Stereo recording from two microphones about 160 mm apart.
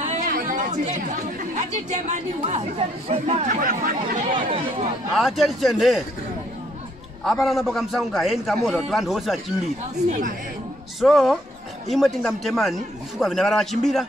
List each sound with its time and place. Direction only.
0.0 s chatter: 55° right (ahead or behind)
1.5 s speech: 45° right (ahead or behind)
3.4 s speech: 60° right (ahead or behind)
5.1 s a man's voice: centre (ahead or behind)
7.2 s a man's voice: centre (ahead or behind)
10.0 s speech: 50° right (ahead or behind)
11.0 s a man's voice: centre (ahead or behind)